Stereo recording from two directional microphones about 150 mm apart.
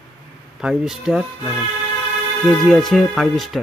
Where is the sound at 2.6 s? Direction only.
Centre (ahead or behind).